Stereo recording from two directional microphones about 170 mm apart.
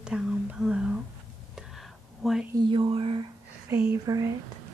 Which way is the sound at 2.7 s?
30° right (ahead or behind).